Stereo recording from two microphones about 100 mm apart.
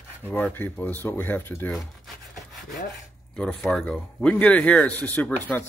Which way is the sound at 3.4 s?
10° left (ahead or behind).